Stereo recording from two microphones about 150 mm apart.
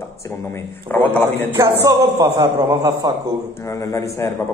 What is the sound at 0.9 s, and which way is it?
Speech, 15° left (ahead or behind).